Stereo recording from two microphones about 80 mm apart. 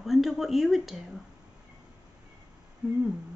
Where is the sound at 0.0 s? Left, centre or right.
Centre.